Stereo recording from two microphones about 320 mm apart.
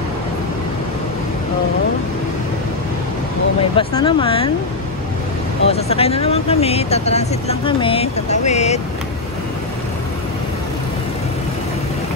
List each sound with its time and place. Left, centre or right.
3.7 s speech: centre
5.7 s speech: centre